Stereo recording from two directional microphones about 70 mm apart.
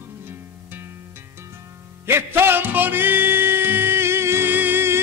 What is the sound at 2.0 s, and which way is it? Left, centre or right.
Music, right.